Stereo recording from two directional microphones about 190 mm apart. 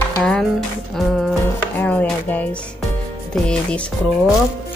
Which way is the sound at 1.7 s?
10° left (ahead or behind).